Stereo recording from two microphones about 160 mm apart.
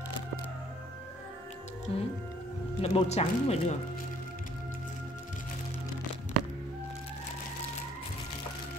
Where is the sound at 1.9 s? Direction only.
35° left (ahead or behind).